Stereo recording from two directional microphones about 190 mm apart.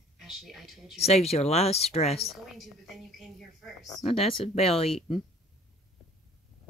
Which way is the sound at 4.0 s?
30° left (ahead or behind).